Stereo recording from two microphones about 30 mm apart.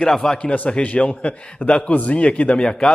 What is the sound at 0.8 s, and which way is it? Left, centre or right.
A man's voice, left.